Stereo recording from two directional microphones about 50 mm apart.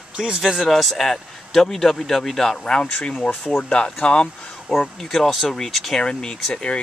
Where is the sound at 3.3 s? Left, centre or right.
Centre.